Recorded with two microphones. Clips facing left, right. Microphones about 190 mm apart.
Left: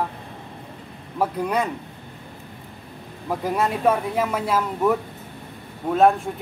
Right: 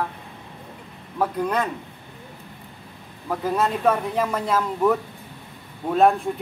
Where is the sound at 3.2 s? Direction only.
10° left (ahead or behind).